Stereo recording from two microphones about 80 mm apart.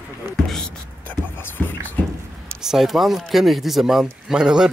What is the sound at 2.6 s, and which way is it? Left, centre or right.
Speech, centre.